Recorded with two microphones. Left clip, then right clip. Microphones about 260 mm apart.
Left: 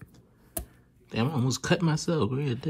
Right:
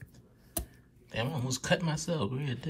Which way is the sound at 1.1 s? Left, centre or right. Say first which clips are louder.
Left 5 dB; centre.